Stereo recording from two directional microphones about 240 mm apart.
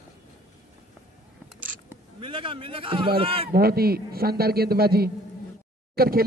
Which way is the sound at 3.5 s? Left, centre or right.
Right.